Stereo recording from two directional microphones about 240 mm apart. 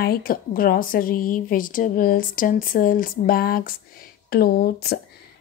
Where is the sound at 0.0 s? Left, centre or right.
Left.